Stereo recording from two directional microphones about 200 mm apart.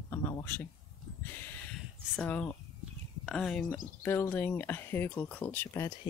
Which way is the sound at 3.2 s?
Centre (ahead or behind).